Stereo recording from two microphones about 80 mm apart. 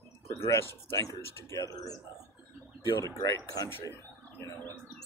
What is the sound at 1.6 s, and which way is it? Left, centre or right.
Speech, left.